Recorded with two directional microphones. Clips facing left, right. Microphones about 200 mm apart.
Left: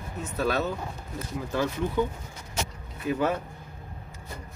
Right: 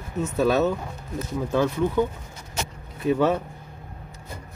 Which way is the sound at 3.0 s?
30° right (ahead or behind).